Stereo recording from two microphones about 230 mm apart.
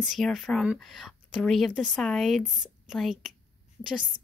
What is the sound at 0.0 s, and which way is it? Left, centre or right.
Speech, centre.